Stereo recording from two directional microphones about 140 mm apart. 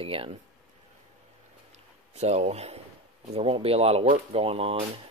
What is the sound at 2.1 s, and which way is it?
Speech, 50° right (ahead or behind).